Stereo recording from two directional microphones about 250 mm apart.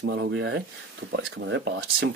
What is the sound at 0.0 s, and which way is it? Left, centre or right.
Speech, right.